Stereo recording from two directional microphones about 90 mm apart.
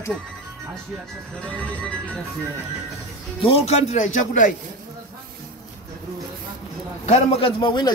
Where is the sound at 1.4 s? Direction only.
15° left (ahead or behind).